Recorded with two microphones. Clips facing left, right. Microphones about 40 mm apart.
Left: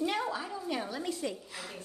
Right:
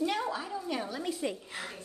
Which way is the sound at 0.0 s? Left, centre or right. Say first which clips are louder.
Right 1 dB; centre.